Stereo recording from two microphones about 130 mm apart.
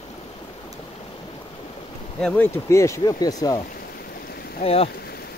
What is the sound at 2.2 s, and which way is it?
Speech, 15° left (ahead or behind).